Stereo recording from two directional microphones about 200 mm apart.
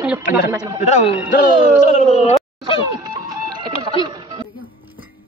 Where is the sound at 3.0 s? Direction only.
20° right (ahead or behind).